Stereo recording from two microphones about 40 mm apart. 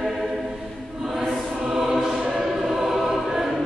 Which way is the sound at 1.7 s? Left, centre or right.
Centre.